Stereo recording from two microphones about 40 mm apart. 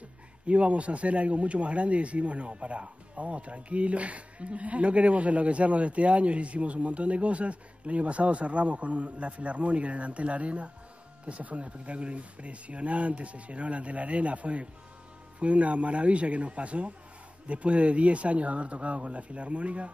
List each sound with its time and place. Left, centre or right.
0.5 s speech: right